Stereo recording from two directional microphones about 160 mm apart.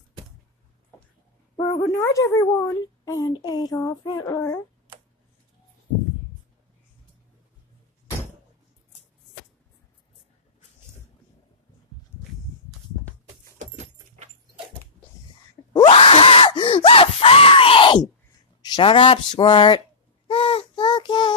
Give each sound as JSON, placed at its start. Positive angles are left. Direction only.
{"t": 1.8, "sound": "a woman's voice", "side_deg": 20}
{"t": 13.6, "sound": "keys jangling", "side_deg": -45}
{"t": 15.7, "sound": "screaming", "side_deg": 35}
{"t": 18.6, "sound": "a woman's voice", "side_deg": 30}
{"t": 20.2, "sound": "child singing", "side_deg": 35}